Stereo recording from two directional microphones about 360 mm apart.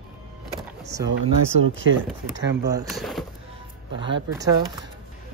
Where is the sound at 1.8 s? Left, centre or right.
Right.